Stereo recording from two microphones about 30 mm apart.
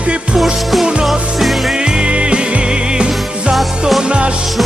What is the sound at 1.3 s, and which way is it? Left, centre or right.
Music, centre.